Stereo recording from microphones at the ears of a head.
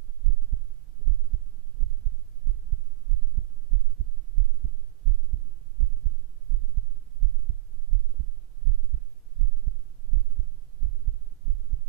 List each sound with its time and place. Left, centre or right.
1.0 s heart sounds: right